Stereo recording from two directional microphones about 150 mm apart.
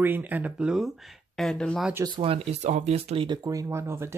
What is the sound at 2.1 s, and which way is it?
Speech, 40° right (ahead or behind).